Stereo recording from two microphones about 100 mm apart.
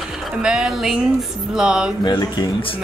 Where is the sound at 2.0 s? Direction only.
45° left (ahead or behind).